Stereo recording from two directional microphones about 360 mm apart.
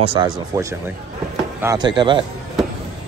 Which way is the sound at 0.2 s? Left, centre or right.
Centre.